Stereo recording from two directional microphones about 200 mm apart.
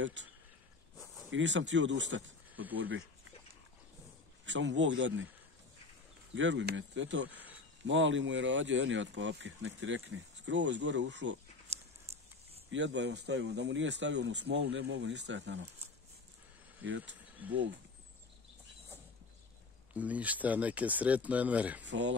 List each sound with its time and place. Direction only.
0.0 s speech: 65° right (ahead or behind)
0.9 s a sound: centre (ahead or behind)
1.3 s speech: 65° right (ahead or behind)
4.5 s speech: 65° right (ahead or behind)
6.3 s speech: 65° right (ahead or behind)
11.7 s a sound: 30° right (ahead or behind)
12.7 s speech: 65° right (ahead or behind)
16.8 s speech: 70° right (ahead or behind)
17.4 s speech: 5° right (ahead or behind)
19.9 s speech: 5° right (ahead or behind)
21.8 s speech: 65° right (ahead or behind)